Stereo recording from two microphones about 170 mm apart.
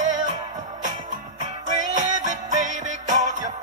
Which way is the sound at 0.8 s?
45° right (ahead or behind).